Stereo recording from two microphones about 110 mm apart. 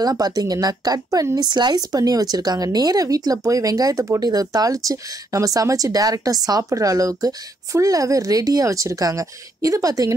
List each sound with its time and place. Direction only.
0.0 s speech: 35° right (ahead or behind)